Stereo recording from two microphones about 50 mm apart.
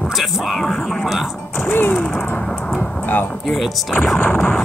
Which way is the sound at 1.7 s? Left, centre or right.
Left.